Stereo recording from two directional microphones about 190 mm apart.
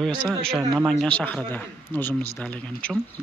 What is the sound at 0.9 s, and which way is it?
Speech, 5° left (ahead or behind).